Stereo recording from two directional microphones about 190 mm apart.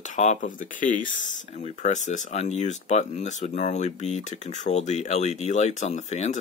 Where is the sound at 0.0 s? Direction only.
40° left (ahead or behind).